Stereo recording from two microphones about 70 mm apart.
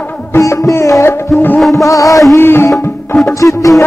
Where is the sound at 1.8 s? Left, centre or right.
Left.